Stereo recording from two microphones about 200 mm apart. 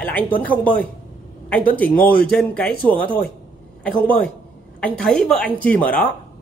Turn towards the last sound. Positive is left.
turn(degrees=5)  # may be behind; listen again after turning